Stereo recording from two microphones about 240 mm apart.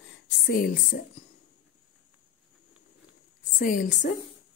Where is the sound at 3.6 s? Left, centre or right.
Left.